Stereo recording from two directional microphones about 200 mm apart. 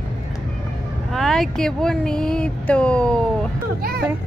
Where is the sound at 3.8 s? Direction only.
50° right (ahead or behind).